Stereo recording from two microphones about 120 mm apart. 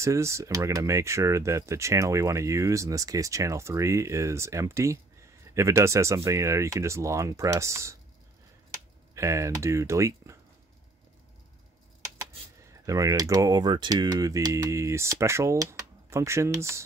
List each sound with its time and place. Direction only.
0.0 s speech: 25° right (ahead or behind)
9.1 s speech: 25° right (ahead or behind)
12.8 s speech: 30° right (ahead or behind)